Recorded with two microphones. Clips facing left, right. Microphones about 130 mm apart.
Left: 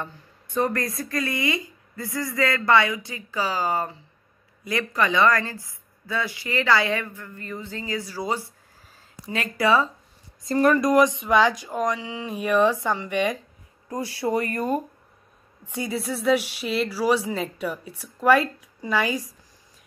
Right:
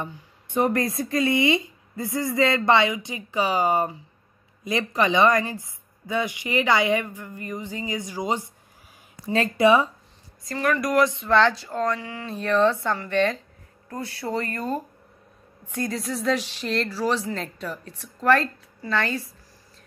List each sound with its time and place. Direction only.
0.5 s a woman's voice: 25° right (ahead or behind)
10.4 s speech: 35° left (ahead or behind)
10.8 s speech: 20° left (ahead or behind)
15.7 s speech: 5° left (ahead or behind)